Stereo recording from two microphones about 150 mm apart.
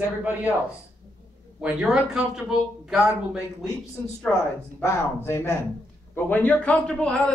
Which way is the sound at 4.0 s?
15° left (ahead or behind).